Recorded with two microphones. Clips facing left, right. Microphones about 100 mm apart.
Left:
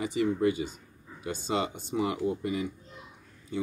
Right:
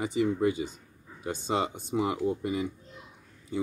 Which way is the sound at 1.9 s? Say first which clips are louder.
Right 1 dB; 25° right (ahead or behind).